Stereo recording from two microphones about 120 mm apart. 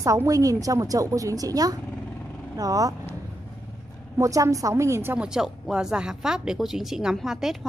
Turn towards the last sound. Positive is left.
turn(degrees=0)  # may be behind; listen again after turning